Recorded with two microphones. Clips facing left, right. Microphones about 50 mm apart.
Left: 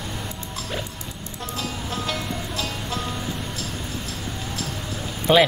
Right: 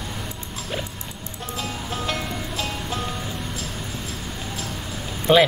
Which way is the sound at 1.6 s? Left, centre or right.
Centre.